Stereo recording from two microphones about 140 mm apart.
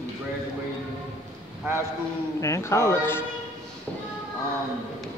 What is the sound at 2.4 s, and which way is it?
Speech, 20° left (ahead or behind).